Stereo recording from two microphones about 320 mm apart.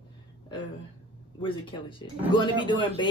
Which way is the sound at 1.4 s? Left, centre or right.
Centre.